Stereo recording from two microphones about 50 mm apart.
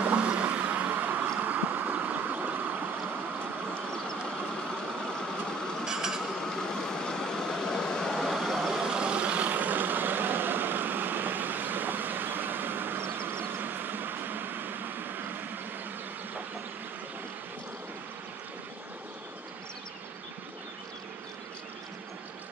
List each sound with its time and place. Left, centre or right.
0.0 s boat: right
1.5 s a sound: right
5.9 s a sound: centre
6.6 s vehicle: centre
8.2 s vehicle: centre
8.7 s vehicle: centre; by 15.4 s right